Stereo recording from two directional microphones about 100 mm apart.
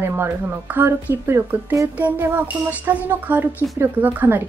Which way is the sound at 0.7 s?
20° right (ahead or behind).